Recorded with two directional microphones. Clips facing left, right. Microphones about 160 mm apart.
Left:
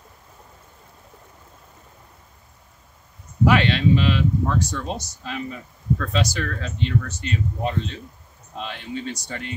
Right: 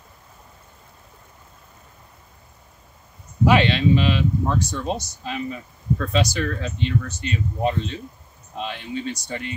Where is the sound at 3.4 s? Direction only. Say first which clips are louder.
Right 1 dB; 20° right (ahead or behind).